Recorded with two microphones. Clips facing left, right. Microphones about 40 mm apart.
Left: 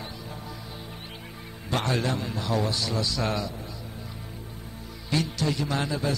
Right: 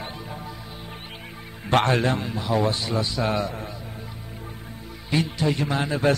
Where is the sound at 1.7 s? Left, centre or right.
Right.